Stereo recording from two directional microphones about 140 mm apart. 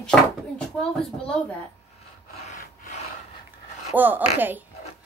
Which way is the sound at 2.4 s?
70° left (ahead or behind).